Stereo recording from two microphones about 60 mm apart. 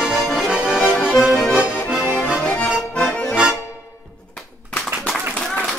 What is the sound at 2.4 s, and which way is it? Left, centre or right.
Accordion, centre.